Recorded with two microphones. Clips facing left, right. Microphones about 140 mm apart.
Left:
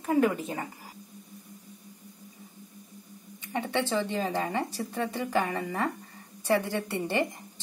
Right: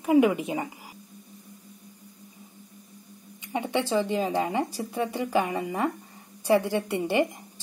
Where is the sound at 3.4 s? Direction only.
15° right (ahead or behind).